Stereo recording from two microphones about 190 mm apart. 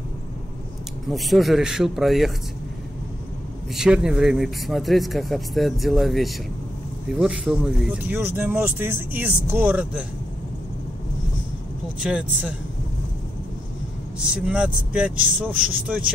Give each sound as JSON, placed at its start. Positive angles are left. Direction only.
{"t": 1.1, "sound": "speech", "side_deg": 0}
{"t": 3.7, "sound": "speech", "side_deg": -5}
{"t": 12.0, "sound": "speech", "side_deg": -5}
{"t": 14.3, "sound": "speech", "side_deg": -5}